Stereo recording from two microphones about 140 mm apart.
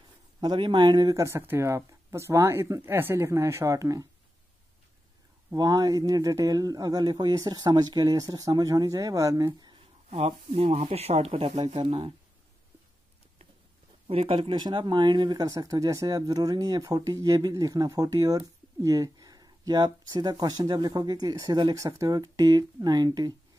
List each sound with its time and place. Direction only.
0.4 s speech: 35° right (ahead or behind)
5.5 s speech: 30° right (ahead or behind)
10.0 s speech: 50° right (ahead or behind)
14.0 s speech: 40° right (ahead or behind)